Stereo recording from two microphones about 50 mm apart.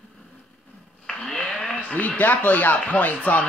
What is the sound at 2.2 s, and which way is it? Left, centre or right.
Speech, left.